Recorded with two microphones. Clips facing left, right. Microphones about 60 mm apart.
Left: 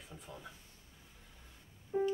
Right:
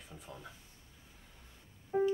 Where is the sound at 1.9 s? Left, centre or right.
Right.